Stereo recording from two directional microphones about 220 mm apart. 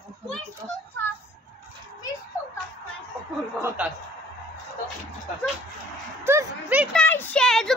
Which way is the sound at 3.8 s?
10° right (ahead or behind).